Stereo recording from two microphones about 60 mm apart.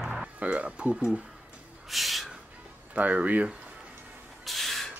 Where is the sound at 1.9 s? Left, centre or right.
Centre.